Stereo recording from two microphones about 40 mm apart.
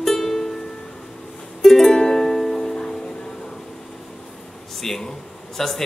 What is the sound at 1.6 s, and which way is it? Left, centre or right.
Music, centre.